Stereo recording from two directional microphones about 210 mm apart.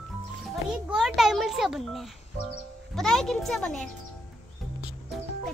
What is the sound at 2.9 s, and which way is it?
Speech, centre (ahead or behind).